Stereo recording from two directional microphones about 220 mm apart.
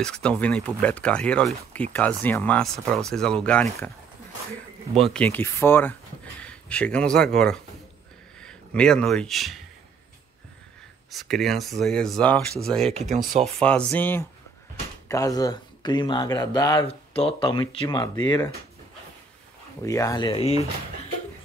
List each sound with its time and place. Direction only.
0.0 s speech: 5° left (ahead or behind)
4.9 s speech: 5° left (ahead or behind)
11.1 s speech: centre (ahead or behind)
13.1 s speech: 35° right (ahead or behind)
13.6 s speech: 5° left (ahead or behind)
19.8 s speech: 15° left (ahead or behind)